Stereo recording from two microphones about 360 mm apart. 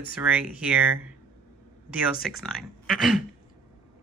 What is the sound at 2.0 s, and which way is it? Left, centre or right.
Speech, centre.